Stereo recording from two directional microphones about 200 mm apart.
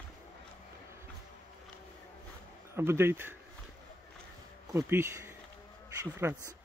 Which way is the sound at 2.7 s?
10° right (ahead or behind).